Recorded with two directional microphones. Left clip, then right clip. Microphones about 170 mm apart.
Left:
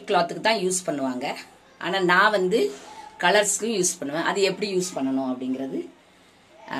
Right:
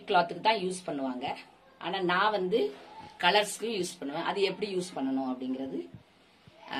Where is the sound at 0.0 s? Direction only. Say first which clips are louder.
Left 4 dB; 45° left (ahead or behind).